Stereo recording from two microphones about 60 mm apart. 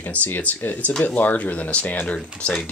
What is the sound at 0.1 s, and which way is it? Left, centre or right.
Speech, left.